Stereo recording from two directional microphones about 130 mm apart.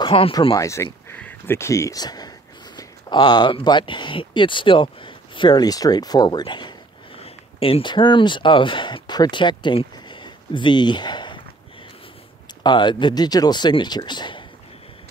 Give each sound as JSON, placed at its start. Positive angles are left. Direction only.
{"t": 0.0, "sound": "speech", "side_deg": 40}
{"t": 0.6, "sound": "speech", "side_deg": 25}
{"t": 7.2, "sound": "speech", "side_deg": 50}
{"t": 12.6, "sound": "speech", "side_deg": 35}